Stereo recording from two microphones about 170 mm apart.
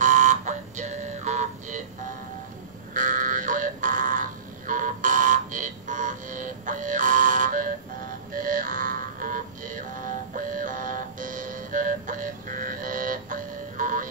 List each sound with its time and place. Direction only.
0.0 s a sound: 50° right (ahead or behind)
2.9 s buzzer: 50° right (ahead or behind)
8.3 s music: 55° right (ahead or behind)